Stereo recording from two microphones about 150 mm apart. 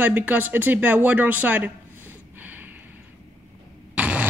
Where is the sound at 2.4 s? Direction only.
10° right (ahead or behind).